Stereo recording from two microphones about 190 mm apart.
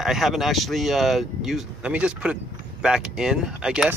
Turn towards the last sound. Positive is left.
turn(degrees=-5)  # may be behind; listen again after turning